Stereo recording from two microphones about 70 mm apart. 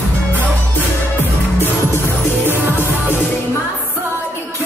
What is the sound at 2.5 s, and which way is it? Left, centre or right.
Music, right.